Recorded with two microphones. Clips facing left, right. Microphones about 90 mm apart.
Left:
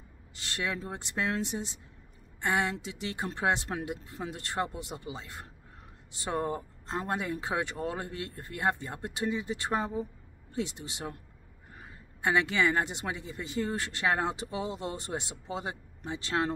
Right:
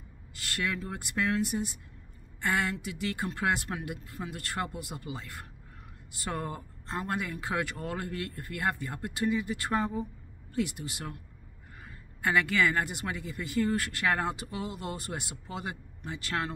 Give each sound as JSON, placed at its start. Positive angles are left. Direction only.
{"t": 0.4, "sound": "speech", "side_deg": 25}
{"t": 12.2, "sound": "speech", "side_deg": 20}